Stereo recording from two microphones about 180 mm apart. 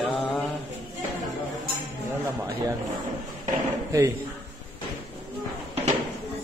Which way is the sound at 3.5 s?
15° right (ahead or behind).